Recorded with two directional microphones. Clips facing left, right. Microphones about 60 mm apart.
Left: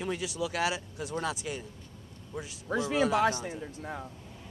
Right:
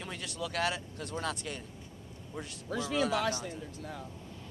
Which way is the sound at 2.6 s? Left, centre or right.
Left.